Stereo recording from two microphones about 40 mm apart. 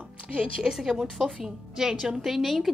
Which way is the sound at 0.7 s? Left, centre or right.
Centre.